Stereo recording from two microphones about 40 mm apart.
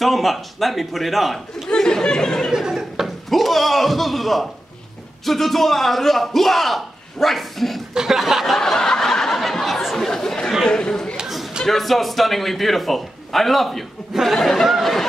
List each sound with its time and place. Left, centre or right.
0.0 s a man's voice: centre
1.7 s chatter: centre
2.5 s a sound: centre
3.3 s a man's voice: centre
7.9 s chuckle: centre
8.5 s a sound: centre
10.0 s chatter: centre
10.7 s speech: centre
11.6 s a man's voice: centre